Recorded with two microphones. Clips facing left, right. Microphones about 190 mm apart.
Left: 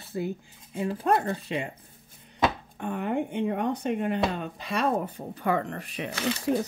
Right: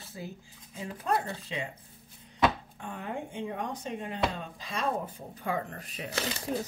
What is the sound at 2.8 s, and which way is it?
Speech, 60° left (ahead or behind).